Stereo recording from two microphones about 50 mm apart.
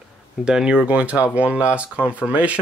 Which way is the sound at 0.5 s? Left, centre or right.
Centre.